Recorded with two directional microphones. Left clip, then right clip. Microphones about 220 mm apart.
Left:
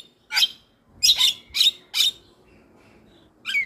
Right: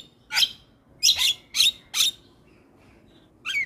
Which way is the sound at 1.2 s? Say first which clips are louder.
Left 2 dB; 10° right (ahead or behind).